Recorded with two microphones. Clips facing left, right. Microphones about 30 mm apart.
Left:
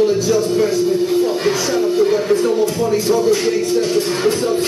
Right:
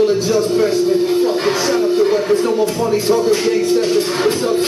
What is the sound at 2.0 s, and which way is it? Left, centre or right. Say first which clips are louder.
Speech: even; centre.